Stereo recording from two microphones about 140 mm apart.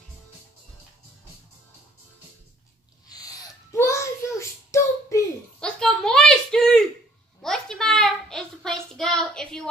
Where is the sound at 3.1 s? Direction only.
25° left (ahead or behind).